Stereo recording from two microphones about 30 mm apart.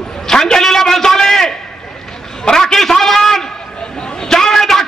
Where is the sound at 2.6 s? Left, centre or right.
Centre.